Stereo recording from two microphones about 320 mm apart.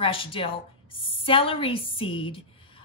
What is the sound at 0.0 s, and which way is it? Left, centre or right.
Speech, centre.